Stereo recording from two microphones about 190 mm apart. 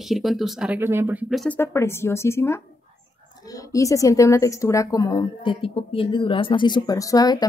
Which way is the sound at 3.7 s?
15° left (ahead or behind).